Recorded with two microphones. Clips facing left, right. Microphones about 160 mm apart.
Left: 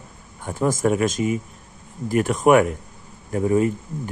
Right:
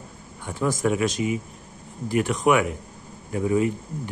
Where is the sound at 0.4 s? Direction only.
45° left (ahead or behind).